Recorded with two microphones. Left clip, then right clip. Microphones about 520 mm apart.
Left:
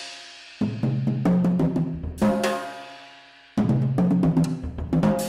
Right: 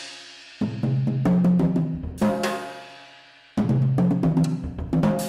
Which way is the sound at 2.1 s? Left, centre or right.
Right.